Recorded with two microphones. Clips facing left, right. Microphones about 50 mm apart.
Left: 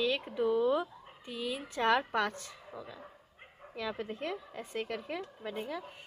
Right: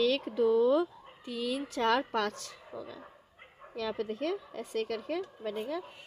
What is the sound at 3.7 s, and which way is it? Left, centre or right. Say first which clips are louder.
Speech: right 3 dB; centre.